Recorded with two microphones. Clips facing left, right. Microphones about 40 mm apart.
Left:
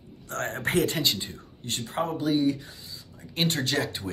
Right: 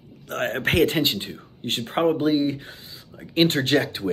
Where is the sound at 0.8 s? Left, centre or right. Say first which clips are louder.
Right 5 dB; right.